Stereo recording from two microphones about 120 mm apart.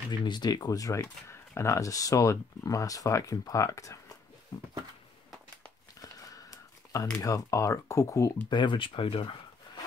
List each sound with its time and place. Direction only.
0.2 s speech: 35° left (ahead or behind)
5.9 s crumpling: 30° left (ahead or behind)
7.2 s speech: 30° left (ahead or behind)
8.5 s speech: 40° left (ahead or behind)